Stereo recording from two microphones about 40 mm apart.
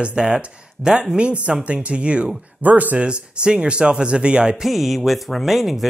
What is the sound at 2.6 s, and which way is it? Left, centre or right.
Speech, right.